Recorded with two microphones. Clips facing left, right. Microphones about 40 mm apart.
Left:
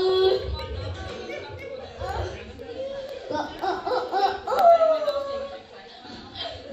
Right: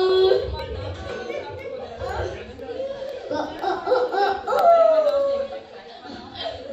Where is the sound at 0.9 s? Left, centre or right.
Right.